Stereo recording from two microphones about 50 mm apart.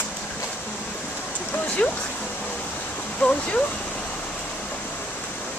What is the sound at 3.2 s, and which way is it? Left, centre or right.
Speech, left.